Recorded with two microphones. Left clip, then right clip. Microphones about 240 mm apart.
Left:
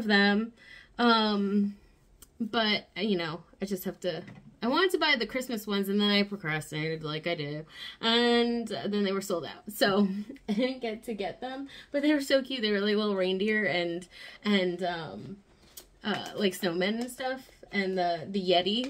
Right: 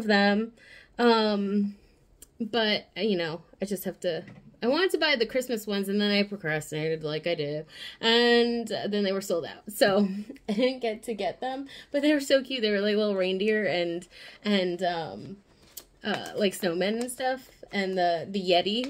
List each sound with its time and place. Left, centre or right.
0.0 s speech: centre
11.4 s speech: left
12.1 s speech: centre
16.0 s speech: centre